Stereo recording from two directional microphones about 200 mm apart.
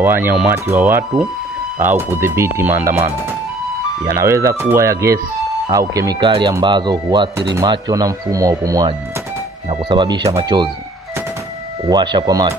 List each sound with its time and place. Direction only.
0.0 s speech: 10° right (ahead or behind)
4.0 s speech: 15° right (ahead or behind)
11.8 s speech: 20° right (ahead or behind)